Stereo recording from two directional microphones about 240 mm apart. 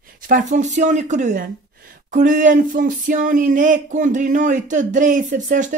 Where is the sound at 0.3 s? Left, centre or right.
Right.